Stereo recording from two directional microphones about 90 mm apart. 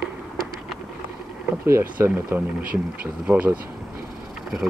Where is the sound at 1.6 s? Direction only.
30° right (ahead or behind).